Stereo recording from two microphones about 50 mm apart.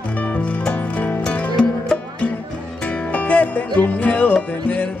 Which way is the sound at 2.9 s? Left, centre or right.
Left.